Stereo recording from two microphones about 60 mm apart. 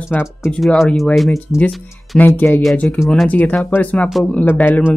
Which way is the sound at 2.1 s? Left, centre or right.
Left.